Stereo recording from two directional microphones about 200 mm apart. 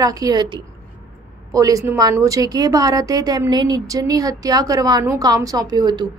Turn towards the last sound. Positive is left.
turn(degrees=-20)  # may be behind; listen again after turning